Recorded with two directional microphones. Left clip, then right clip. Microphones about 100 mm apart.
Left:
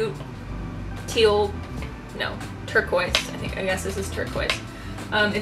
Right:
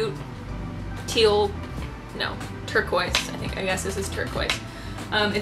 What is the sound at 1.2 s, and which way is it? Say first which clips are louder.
Speech: left 1 dB; 15° right (ahead or behind).